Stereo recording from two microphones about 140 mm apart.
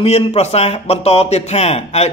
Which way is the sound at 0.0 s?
45° left (ahead or behind).